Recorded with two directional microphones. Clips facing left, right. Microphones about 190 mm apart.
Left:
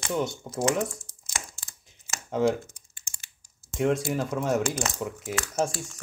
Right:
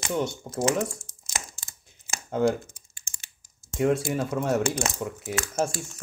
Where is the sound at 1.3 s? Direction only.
20° right (ahead or behind).